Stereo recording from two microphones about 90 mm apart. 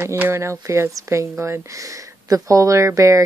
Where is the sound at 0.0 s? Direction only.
25° right (ahead or behind).